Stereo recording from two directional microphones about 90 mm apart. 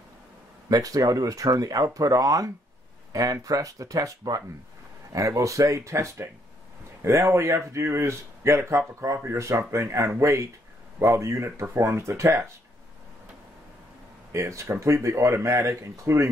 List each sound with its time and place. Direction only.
0.7 s speech: 40° right (ahead or behind)
14.3 s speech: 35° right (ahead or behind)